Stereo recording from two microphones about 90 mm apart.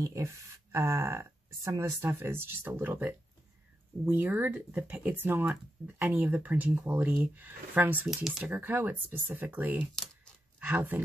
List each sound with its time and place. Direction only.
0.0 s speech: 35° right (ahead or behind)
8.1 s speech: 5° right (ahead or behind)
8.5 s speech: 20° right (ahead or behind)